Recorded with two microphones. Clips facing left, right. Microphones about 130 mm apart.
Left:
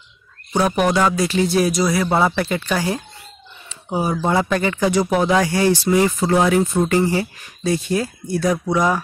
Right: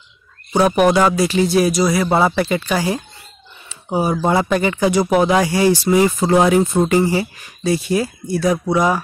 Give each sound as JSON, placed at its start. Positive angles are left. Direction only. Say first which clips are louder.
{"t": 0.5, "sound": "speech", "louder": "right 4 dB", "side_deg": -10}